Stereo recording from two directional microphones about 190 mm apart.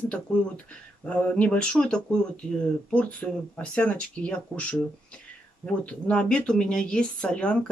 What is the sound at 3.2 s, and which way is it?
A woman's voice, 5° left (ahead or behind).